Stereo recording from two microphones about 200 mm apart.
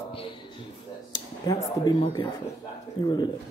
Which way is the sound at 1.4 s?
20° left (ahead or behind).